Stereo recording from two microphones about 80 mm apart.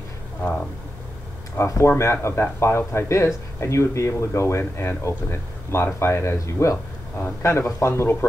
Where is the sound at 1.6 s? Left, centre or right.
Left.